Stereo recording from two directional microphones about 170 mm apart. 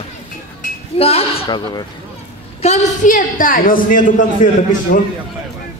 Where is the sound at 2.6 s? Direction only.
45° left (ahead or behind); by 5.1 s 60° left (ahead or behind).